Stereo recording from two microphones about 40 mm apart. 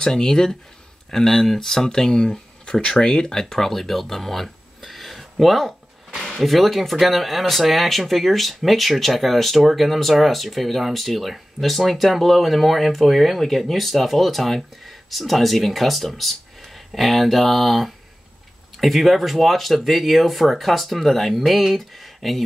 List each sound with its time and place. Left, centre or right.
0.0 s speech: centre